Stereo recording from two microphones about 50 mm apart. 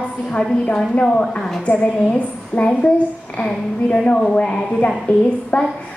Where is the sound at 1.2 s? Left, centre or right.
Centre.